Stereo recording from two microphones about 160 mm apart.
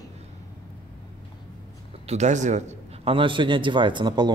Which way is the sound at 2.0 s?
45° right (ahead or behind).